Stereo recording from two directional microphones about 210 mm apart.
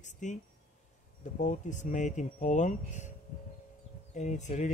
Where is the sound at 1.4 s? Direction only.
35° left (ahead or behind).